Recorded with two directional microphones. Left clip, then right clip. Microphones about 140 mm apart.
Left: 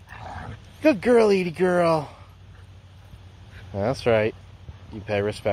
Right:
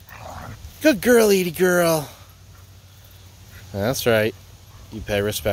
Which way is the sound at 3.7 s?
50° right (ahead or behind).